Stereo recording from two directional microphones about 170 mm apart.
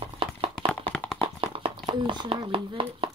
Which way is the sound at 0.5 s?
5° left (ahead or behind).